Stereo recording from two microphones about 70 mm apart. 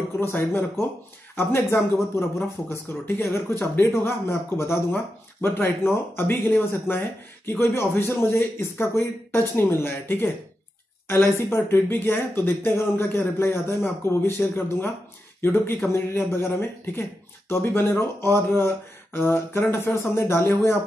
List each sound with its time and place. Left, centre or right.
0.2 s speech: left
3.8 s speech: left